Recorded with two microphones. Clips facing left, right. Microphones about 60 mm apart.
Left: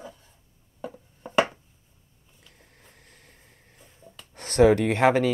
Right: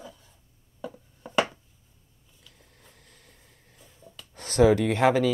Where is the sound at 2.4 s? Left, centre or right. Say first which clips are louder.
Left 1 dB; left.